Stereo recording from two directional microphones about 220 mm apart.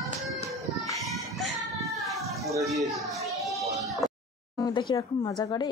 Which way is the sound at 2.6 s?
Centre (ahead or behind).